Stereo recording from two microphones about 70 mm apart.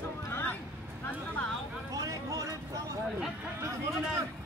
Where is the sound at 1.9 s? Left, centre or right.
Right.